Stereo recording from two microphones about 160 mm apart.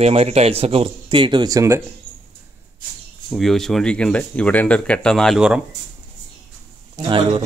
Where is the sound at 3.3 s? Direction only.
Centre (ahead or behind).